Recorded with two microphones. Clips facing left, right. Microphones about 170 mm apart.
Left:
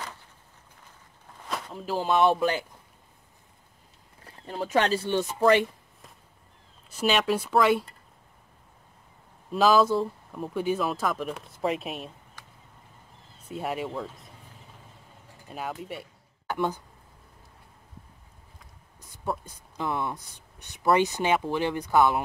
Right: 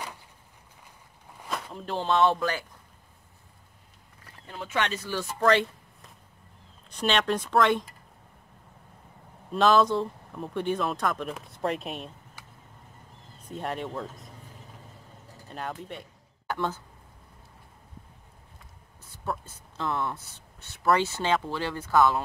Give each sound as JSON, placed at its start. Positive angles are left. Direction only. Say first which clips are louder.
{"t": 1.5, "sound": "speech", "louder": "left 2 dB", "side_deg": 0}
{"t": 4.2, "sound": "speech", "louder": "left 7 dB", "side_deg": 35}
{"t": 5.2, "sound": "speech", "louder": "left 1 dB", "side_deg": 10}
{"t": 6.9, "sound": "speech", "louder": "left 1 dB", "side_deg": 5}
{"t": 9.5, "sound": "speech", "louder": "left 1 dB", "side_deg": 5}
{"t": 13.5, "sound": "speech", "louder": "left 2 dB", "side_deg": 5}
{"t": 15.4, "sound": "speech", "louder": "left 1 dB", "side_deg": 5}
{"t": 19.2, "sound": "speech", "louder": "left 2 dB", "side_deg": 15}